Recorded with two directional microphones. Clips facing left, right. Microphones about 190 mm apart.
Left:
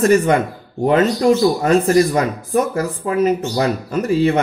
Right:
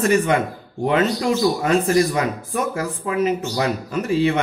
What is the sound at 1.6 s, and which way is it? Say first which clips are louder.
Speech: left 4 dB; 40° left (ahead or behind).